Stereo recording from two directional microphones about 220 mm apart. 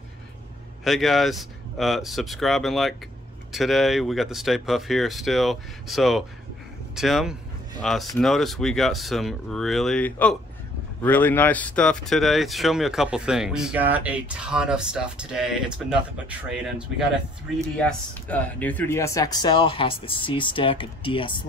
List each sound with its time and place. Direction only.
0.8 s speech: centre (ahead or behind); by 21.5 s 25° left (ahead or behind)